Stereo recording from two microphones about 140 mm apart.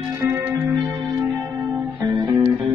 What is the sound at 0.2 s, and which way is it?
Music, 15° right (ahead or behind).